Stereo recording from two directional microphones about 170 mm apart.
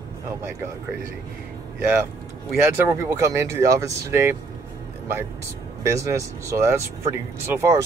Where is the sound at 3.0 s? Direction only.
15° right (ahead or behind).